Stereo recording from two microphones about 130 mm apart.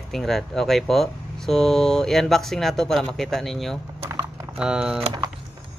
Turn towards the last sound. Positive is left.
turn(degrees=-5)  # may be behind; listen again after turning